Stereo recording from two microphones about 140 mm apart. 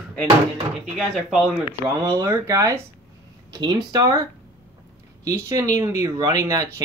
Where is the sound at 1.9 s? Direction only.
20° right (ahead or behind).